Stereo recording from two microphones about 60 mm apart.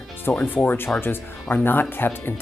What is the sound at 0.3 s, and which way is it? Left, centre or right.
Speech, left.